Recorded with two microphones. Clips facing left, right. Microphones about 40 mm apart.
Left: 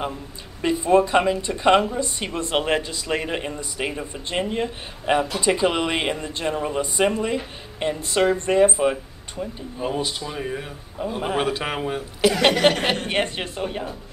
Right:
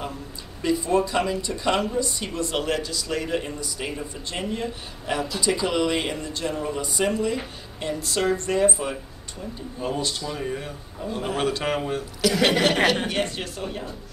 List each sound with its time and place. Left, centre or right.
0.6 s speech: left; by 12.0 s centre
12.2 s speech: left